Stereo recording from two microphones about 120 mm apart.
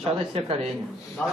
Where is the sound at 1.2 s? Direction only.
5° left (ahead or behind).